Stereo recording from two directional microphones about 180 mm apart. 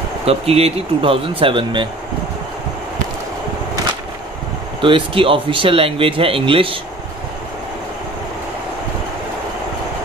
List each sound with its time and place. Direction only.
0.2 s speech: 35° right (ahead or behind)
4.8 s speech: 30° right (ahead or behind)